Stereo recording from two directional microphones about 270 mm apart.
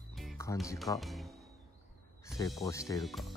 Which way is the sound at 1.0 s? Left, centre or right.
Centre.